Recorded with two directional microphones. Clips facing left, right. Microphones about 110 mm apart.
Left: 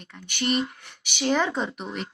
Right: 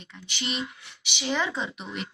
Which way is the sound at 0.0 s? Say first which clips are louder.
Left 6 dB; 50° left (ahead or behind).